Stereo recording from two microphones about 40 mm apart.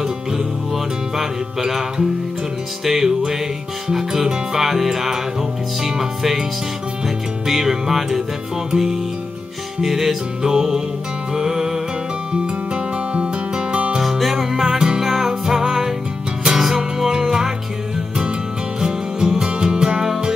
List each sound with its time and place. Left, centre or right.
1.1 s music: centre
7.4 s music: centre; by 13.9 s right
13.9 s music: centre
18.8 s music: centre